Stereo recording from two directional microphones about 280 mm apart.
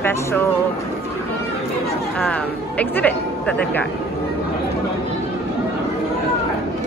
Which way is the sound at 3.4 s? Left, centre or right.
Centre.